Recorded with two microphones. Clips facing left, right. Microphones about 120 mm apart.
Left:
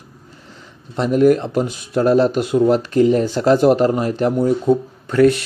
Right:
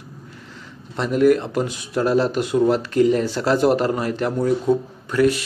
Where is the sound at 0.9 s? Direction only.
40° left (ahead or behind).